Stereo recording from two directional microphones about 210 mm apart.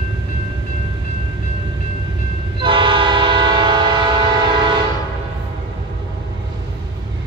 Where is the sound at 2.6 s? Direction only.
25° right (ahead or behind).